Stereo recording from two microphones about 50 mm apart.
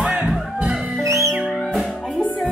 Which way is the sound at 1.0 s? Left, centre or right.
Right.